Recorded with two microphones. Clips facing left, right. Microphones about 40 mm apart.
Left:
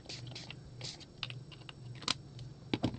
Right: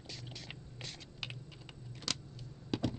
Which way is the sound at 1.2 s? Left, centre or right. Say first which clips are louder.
Even; centre.